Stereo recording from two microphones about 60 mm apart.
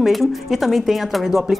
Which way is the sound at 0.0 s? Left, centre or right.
Centre.